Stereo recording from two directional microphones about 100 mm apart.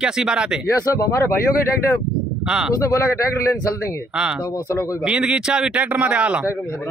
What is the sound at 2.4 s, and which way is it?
Speech, 5° right (ahead or behind).